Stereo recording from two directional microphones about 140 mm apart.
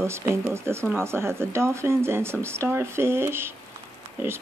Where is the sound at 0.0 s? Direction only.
20° right (ahead or behind).